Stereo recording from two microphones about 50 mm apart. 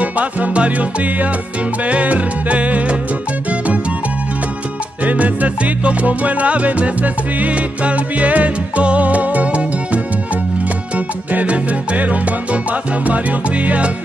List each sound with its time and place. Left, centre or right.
0.0 s music: right
5.0 s music: right
11.3 s music: right